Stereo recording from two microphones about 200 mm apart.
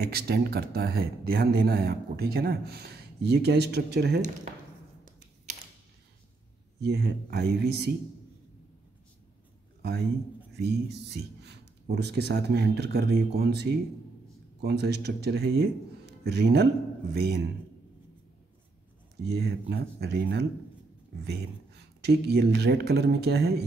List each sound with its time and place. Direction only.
0.0 s speech: 50° right (ahead or behind)
6.8 s speech: 55° right (ahead or behind)
9.8 s a sound: 55° right (ahead or behind)
10.5 s speech: 55° right (ahead or behind)
19.2 s speech: 55° right (ahead or behind)
22.0 s speech: 55° right (ahead or behind)